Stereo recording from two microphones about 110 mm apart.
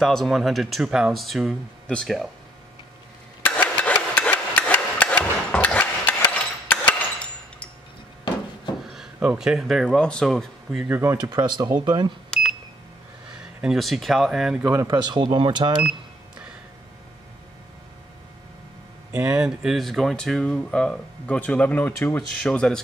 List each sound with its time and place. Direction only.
0.0 s speech: centre (ahead or behind)
3.4 s hammer: 15° left (ahead or behind)
6.7 s a sound: 10° left (ahead or behind)
8.9 s speech: 5° right (ahead or behind)
10.9 s speech: 20° right (ahead or behind)
11.1 s speech: 40° right (ahead or behind)
13.4 s speech: 5° right (ahead or behind)
14.6 s speech: 15° right (ahead or behind)
14.9 s speech: 40° right (ahead or behind)
19.1 s speech: 5° right (ahead or behind); by 22.2 s 20° left (ahead or behind)
22.4 s speech: 5° left (ahead or behind)